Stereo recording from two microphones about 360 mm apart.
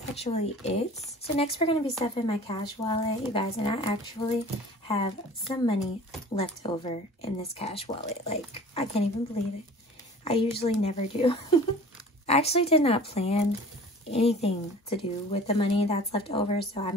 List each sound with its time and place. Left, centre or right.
0.1 s speech: centre
10.2 s speech: centre